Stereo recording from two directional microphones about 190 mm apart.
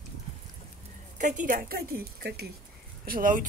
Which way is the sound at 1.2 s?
40° right (ahead or behind).